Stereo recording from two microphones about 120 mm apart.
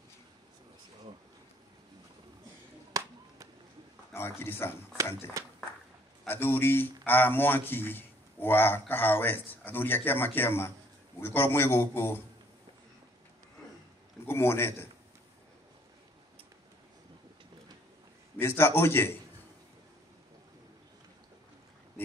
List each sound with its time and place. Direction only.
2.9 s a sound: 30° right (ahead or behind)
4.1 s a man's voice: 20° left (ahead or behind)
5.4 s speech: 25° right (ahead or behind)
6.2 s a man's voice: 20° left (ahead or behind)
14.2 s a man's voice: 20° left (ahead or behind)
18.4 s a man's voice: 20° left (ahead or behind)